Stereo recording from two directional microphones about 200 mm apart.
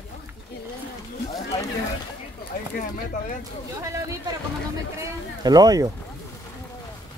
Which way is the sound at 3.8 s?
15° right (ahead or behind).